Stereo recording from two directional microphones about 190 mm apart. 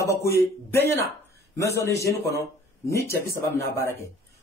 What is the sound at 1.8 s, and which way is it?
Speech, 15° left (ahead or behind).